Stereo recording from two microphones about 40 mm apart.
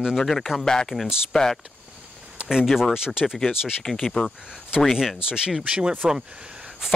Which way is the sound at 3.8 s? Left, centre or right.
Centre.